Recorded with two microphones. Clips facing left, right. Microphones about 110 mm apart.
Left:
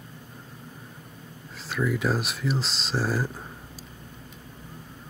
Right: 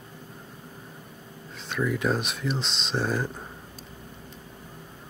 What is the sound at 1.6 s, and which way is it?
Speech, centre (ahead or behind).